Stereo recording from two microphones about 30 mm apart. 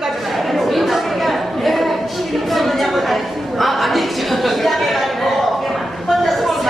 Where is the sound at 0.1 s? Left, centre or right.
Centre.